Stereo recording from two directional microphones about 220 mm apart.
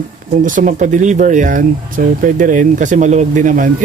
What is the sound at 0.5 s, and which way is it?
Speech, 35° right (ahead or behind).